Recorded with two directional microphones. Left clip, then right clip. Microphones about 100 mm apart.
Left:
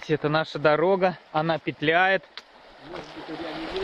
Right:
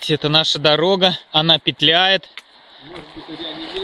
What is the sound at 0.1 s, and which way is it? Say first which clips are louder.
Speech: right 8 dB; 25° right (ahead or behind).